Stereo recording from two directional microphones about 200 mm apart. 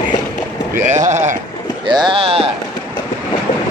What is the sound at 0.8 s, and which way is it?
Speech, 35° right (ahead or behind).